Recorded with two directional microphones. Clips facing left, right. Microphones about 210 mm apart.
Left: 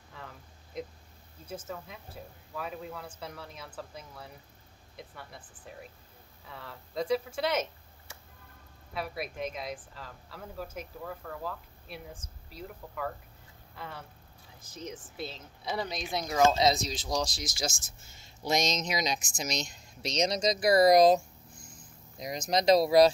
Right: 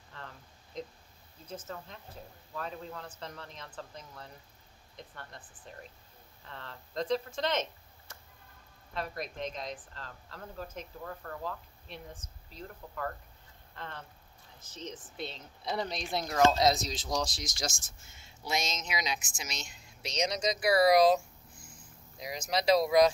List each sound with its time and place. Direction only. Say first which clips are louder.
0.1 s a sound: left 1 dB; 10° left (ahead or behind)
1.5 s speech: left 2 dB; 10° left (ahead or behind)
8.9 s speech: left 1 dB; 10° left (ahead or behind)
18.2 s speech: left 6 dB; 40° left (ahead or behind)
22.5 s speech: left 3 dB; 40° left (ahead or behind)